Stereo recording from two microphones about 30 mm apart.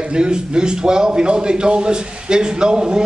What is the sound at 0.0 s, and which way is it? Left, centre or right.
A man's voice, right.